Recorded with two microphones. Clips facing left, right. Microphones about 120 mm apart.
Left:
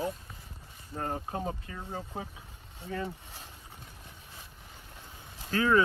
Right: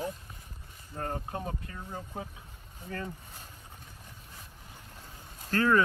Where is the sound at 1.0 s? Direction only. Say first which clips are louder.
Left 1 dB; 25° left (ahead or behind).